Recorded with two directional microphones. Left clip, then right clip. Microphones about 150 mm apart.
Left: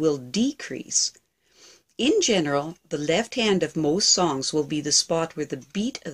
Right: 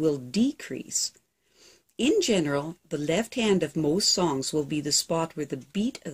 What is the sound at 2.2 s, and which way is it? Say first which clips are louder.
Speech: left 3 dB; 25° right (ahead or behind).